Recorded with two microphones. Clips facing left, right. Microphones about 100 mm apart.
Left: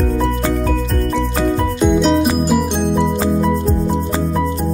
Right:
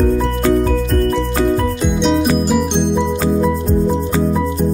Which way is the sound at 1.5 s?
Centre (ahead or behind).